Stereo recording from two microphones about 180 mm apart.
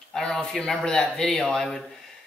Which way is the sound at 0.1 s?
5° left (ahead or behind).